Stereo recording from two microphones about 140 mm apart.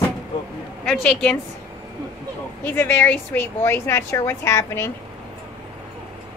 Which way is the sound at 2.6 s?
15° left (ahead or behind).